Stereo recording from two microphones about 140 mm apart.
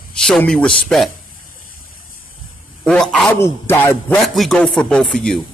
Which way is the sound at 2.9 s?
5° left (ahead or behind).